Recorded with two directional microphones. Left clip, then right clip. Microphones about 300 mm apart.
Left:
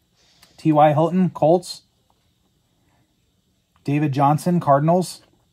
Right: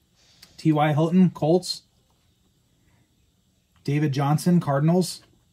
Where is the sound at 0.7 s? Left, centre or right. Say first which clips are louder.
Left 7 dB; centre.